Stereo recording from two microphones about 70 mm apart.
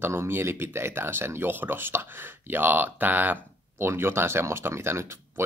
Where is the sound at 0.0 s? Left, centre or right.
Right.